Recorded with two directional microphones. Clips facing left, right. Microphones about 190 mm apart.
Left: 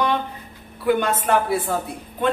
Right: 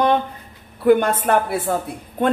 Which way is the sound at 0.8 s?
50° right (ahead or behind).